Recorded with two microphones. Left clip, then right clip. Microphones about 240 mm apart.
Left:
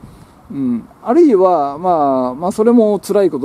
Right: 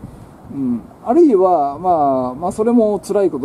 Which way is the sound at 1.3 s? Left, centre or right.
Left.